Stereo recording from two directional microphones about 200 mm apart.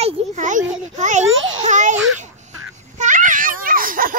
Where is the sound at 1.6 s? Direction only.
35° right (ahead or behind).